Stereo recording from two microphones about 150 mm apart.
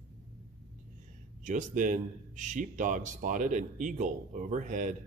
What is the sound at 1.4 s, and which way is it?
A man's voice, 55° right (ahead or behind).